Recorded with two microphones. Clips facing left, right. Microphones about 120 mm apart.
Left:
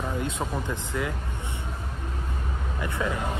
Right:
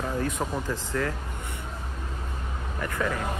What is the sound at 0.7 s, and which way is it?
Speech, 15° left (ahead or behind).